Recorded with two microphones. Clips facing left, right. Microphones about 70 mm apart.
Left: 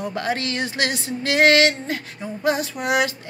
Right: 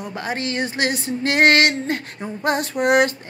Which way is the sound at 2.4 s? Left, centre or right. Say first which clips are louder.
Right 2 dB; right.